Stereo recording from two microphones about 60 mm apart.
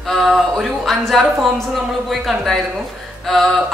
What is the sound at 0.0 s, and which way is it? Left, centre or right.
A woman's voice, centre.